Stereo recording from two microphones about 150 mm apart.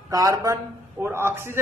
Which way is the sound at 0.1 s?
25° right (ahead or behind).